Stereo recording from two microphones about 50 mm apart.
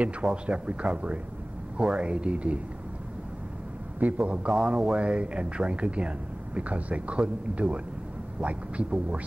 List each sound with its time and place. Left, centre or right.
0.0 s speech: right
4.0 s speech: right